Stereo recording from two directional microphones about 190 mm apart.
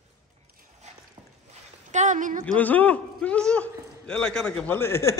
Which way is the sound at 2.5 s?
10° left (ahead or behind).